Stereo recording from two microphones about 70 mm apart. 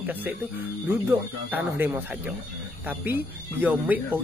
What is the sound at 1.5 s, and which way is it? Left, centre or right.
Speech, right.